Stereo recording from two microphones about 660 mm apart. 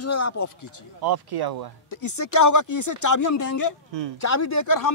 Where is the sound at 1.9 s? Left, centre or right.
Left.